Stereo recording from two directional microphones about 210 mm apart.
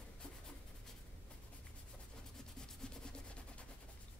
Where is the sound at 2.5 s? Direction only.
5° left (ahead or behind).